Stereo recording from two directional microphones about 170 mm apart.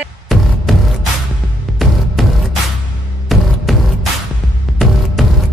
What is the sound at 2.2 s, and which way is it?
Music, centre (ahead or behind).